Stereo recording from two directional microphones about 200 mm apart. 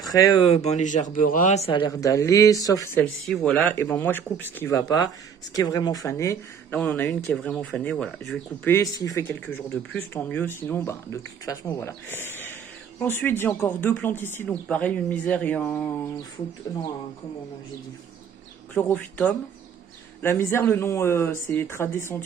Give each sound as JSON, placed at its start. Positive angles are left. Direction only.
{"t": 0.0, "sound": "speech", "side_deg": 20}
{"t": 18.8, "sound": "speech", "side_deg": 5}